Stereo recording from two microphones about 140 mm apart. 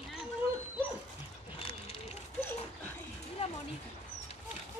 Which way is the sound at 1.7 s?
45° left (ahead or behind).